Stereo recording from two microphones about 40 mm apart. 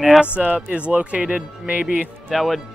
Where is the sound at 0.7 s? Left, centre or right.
Right.